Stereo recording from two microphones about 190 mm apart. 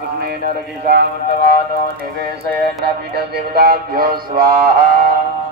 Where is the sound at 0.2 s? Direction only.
55° right (ahead or behind).